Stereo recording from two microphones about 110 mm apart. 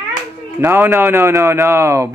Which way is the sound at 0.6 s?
20° right (ahead or behind).